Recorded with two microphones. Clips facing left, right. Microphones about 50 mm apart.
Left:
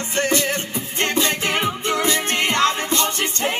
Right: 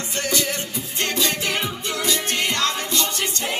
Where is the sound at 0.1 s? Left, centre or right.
Left.